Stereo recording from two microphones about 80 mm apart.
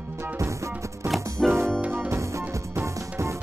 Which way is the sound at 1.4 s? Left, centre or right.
Centre.